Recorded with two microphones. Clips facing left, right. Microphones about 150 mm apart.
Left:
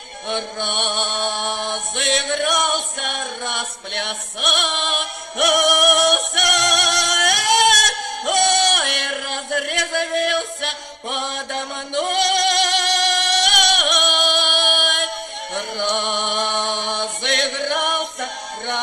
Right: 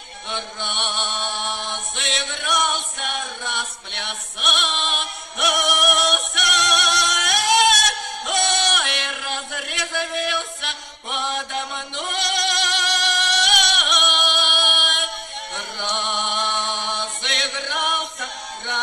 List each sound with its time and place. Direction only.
0.3 s chant: 50° left (ahead or behind)
15.5 s music: 55° left (ahead or behind)